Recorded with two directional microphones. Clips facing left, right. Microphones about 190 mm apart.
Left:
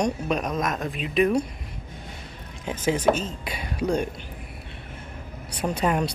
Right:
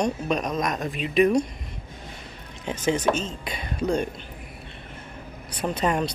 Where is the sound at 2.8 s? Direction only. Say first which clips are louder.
Left 1 dB; 10° left (ahead or behind).